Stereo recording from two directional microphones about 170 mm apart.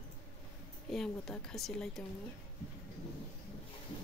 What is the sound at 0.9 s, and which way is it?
Speech, centre (ahead or behind).